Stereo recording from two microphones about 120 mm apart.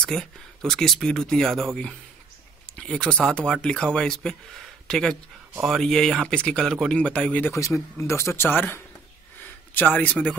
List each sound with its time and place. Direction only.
0.0 s speech: 5° left (ahead or behind)
2.8 s speech: 10° left (ahead or behind)
7.5 s speech: 25° left (ahead or behind)